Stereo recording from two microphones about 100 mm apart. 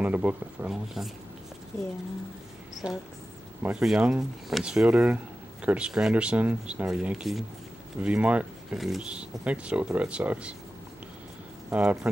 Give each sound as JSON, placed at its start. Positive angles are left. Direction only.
{"t": 0.0, "sound": "speech", "side_deg": -15}
{"t": 0.7, "sound": "speech", "side_deg": 0}
{"t": 2.8, "sound": "speech", "side_deg": -10}
{"t": 4.8, "sound": "speech", "side_deg": -15}
{"t": 8.7, "sound": "speech", "side_deg": 0}
{"t": 11.7, "sound": "speech", "side_deg": -10}